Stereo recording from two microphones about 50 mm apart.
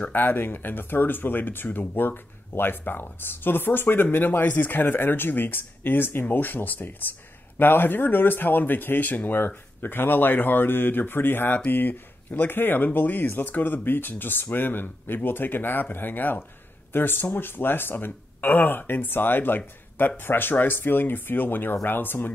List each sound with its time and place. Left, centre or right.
0.0 s speech: left